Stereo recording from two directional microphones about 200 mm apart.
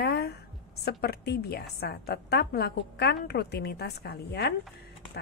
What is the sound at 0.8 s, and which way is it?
Speech, 55° left (ahead or behind).